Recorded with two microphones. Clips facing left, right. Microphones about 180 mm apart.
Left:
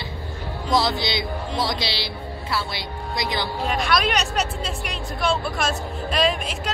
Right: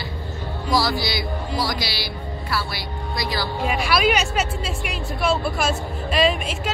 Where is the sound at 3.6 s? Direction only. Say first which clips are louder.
Right 3 dB; 5° right (ahead or behind).